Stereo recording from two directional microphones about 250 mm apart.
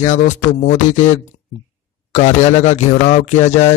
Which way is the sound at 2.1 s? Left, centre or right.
Left.